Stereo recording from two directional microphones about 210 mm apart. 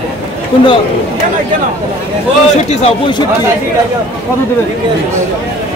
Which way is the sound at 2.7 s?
25° left (ahead or behind).